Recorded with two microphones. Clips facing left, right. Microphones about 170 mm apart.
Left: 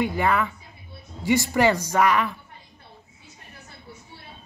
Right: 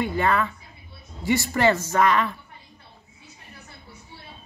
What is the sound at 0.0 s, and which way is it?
Speech, 15° left (ahead or behind).